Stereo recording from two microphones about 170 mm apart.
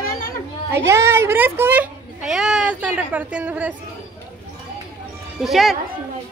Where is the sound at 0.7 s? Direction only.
15° right (ahead or behind).